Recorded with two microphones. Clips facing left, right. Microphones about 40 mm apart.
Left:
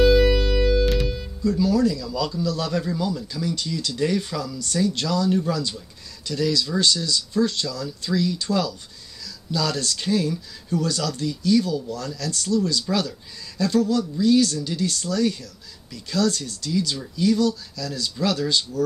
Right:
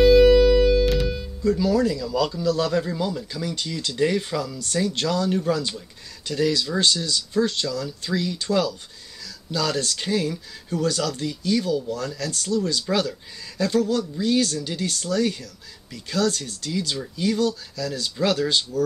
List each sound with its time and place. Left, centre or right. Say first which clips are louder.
0.0 s music: right 4 dB; centre
1.4 s speech: even; right
3.0 s speech: left 1 dB; right